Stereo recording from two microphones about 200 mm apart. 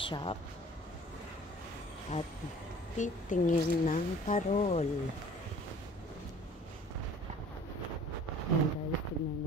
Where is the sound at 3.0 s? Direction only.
40° left (ahead or behind).